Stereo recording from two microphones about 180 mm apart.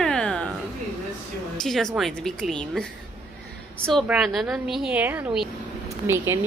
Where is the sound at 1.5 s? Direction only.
Centre (ahead or behind).